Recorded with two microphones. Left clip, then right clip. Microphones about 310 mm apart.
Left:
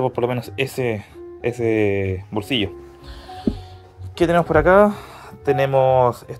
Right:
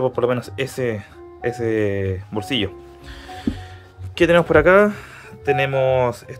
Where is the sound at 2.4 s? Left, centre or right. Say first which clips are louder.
Even; right.